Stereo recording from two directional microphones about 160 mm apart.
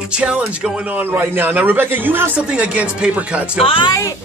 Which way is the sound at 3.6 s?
35° left (ahead or behind).